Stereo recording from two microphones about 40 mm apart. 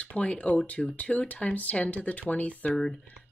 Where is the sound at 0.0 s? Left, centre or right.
Left.